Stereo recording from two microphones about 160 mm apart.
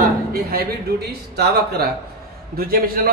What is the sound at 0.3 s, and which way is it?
Speech, 70° right (ahead or behind).